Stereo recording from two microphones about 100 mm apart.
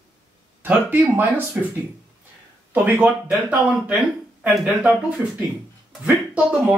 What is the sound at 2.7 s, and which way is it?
Speech, 15° right (ahead or behind).